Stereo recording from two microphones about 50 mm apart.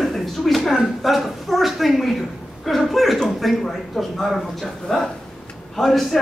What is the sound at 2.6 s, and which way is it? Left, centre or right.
Speech, centre.